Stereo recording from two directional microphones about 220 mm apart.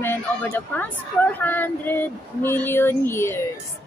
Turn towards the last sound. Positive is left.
turn(degrees=10)  # may be behind; listen again after turning